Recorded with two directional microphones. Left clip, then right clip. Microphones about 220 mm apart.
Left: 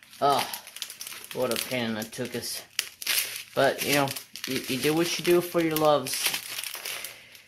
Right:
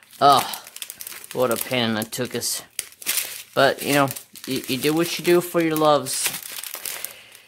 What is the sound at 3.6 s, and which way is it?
Speech, 25° right (ahead or behind).